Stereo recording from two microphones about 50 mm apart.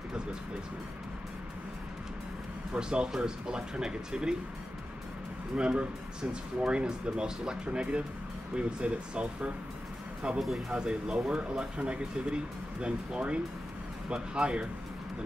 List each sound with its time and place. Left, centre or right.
2.7 s speech: centre
5.6 s speech: right